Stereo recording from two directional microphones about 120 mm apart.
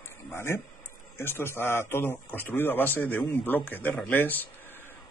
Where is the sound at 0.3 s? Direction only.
20° left (ahead or behind).